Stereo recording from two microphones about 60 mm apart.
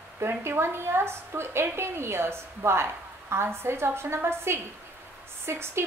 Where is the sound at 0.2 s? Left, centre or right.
Right.